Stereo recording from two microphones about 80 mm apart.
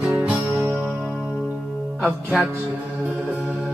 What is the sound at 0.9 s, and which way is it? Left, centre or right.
Music, centre.